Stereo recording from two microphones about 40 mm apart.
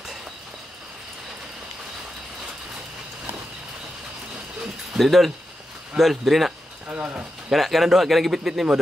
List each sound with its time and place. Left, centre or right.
4.9 s a man's voice: centre
6.9 s speech: right
7.5 s a man's voice: centre